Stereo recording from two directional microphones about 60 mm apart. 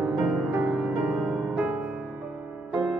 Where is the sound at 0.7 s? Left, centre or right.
Right.